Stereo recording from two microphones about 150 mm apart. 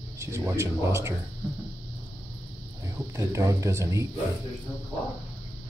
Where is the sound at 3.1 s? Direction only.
20° right (ahead or behind).